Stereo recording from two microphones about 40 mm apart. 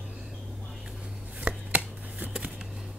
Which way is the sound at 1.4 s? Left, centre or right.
Right.